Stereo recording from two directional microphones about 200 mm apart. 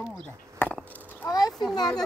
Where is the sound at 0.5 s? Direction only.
5° left (ahead or behind).